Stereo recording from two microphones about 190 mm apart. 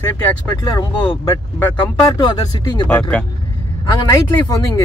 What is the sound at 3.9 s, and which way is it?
Speech, 15° left (ahead or behind).